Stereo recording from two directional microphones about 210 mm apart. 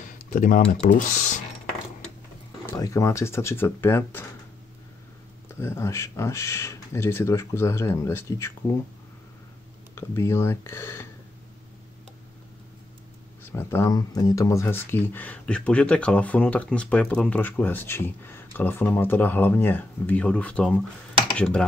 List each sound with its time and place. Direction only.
0.0 s typing: 40° left (ahead or behind)
0.6 s speech: 40° left (ahead or behind)
2.7 s speech: 15° left (ahead or behind)
5.6 s speech: 15° left (ahead or behind)
9.9 s speech: 15° left (ahead or behind)
13.4 s speech: 10° left (ahead or behind)